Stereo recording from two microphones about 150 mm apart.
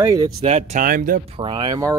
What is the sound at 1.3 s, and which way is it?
Speech, 35° right (ahead or behind).